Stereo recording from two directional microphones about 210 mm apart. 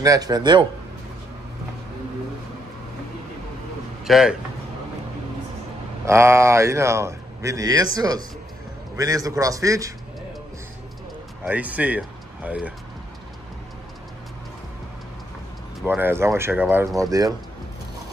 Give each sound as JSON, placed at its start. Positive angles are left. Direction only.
{"t": 0.0, "sound": "speech", "side_deg": -15}
{"t": 4.0, "sound": "speech", "side_deg": 0}
{"t": 6.0, "sound": "a man's voice", "side_deg": -15}
{"t": 11.4, "sound": "speech", "side_deg": -5}
{"t": 15.8, "sound": "a man's voice", "side_deg": -10}